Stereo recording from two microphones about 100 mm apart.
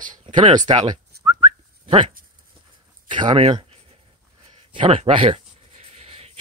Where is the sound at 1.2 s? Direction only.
65° right (ahead or behind).